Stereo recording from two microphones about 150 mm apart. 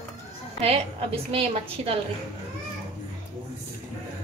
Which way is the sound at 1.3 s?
40° right (ahead or behind).